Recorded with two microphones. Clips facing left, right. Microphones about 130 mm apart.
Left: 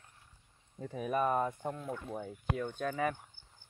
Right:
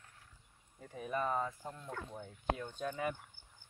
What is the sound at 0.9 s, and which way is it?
Speech, 70° left (ahead or behind).